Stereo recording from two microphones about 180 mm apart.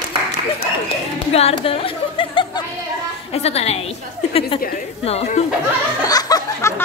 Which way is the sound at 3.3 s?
35° left (ahead or behind).